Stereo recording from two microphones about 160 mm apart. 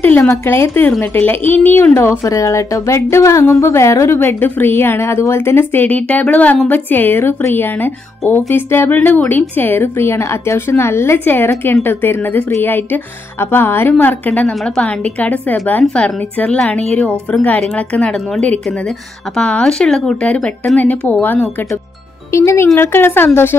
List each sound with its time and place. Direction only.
0.0 s a woman's voice: 15° left (ahead or behind)